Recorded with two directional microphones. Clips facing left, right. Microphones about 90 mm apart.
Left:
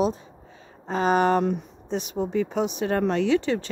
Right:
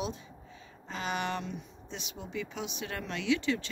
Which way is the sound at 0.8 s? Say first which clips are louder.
Left 13 dB; 40° left (ahead or behind).